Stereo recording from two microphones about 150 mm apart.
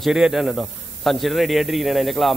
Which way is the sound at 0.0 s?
Centre (ahead or behind).